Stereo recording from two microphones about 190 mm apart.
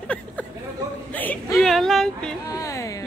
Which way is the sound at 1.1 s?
10° left (ahead or behind).